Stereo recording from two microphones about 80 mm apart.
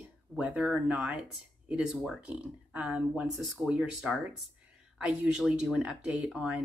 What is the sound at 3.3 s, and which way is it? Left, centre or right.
Speech, centre.